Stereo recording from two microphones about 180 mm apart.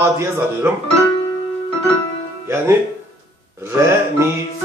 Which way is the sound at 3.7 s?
15° right (ahead or behind).